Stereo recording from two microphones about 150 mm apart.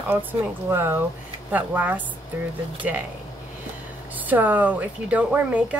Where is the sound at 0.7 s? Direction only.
15° right (ahead or behind).